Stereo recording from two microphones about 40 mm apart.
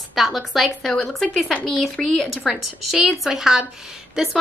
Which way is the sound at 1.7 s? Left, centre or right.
Centre.